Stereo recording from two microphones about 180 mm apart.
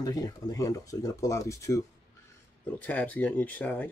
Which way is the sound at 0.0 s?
20° left (ahead or behind).